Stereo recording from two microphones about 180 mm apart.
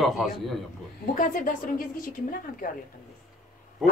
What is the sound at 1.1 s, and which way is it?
Speech, 45° left (ahead or behind).